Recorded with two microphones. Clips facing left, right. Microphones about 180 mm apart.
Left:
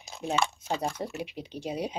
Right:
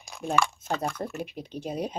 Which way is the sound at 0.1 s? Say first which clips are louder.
Even; 25° left (ahead or behind).